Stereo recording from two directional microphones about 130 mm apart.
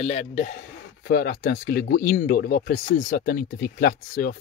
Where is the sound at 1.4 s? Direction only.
90° left.